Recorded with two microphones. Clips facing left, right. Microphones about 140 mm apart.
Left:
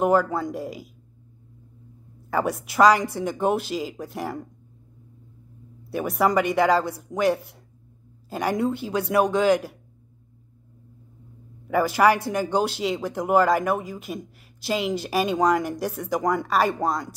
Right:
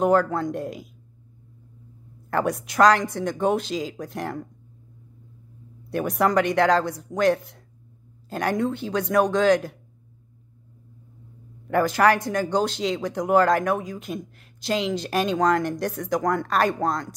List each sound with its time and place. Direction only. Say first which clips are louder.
0.0 s a man's voice: right 1 dB; 5° left (ahead or behind)
2.3 s a man's voice: even; 5° left (ahead or behind)
5.9 s a man's voice: even; centre (ahead or behind)
11.6 s a man's voice: even; 5° left (ahead or behind)